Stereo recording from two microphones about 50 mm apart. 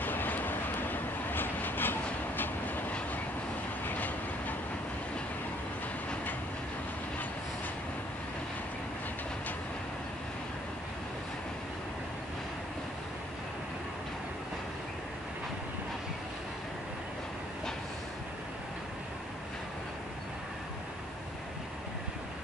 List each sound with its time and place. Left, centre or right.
0.0 s vehicle: left
3.8 s train: left